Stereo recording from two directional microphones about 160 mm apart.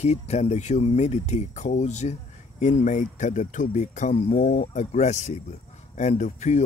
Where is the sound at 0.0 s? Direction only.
45° left (ahead or behind).